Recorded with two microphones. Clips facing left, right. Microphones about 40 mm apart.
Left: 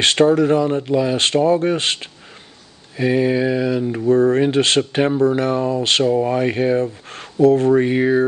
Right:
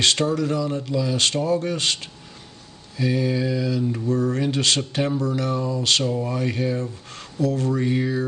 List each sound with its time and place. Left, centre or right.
0.0 s speech: left